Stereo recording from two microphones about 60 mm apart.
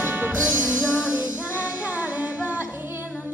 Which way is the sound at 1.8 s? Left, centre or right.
Right.